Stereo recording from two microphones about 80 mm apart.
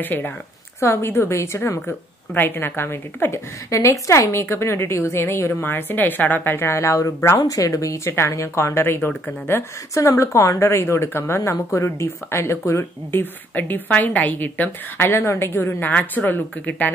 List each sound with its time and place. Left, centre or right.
0.0 s a woman's voice: left
9.9 s a woman's voice: left
15.8 s a woman's voice: left